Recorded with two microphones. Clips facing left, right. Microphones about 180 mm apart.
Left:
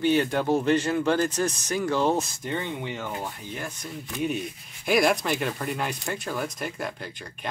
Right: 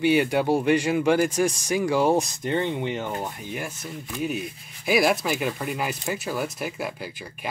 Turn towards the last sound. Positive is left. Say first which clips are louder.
# right 2 dB
turn(degrees=-5)  # may be behind; listen again after turning